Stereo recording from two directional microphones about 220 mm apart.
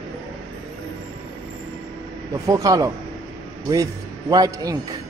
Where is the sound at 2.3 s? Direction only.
15° right (ahead or behind).